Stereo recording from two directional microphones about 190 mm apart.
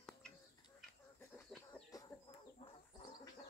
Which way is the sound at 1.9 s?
20° left (ahead or behind).